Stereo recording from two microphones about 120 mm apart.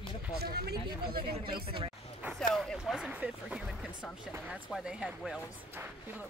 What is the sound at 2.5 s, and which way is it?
Speech, centre (ahead or behind).